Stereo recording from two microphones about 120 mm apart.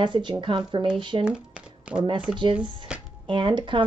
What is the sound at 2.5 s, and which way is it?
Speech, 10° right (ahead or behind).